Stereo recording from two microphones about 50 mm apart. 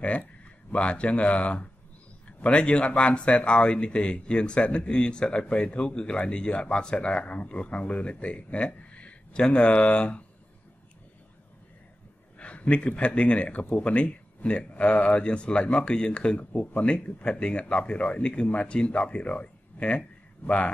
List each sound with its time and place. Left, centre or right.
0.7 s speech: left
12.4 s a man's voice: left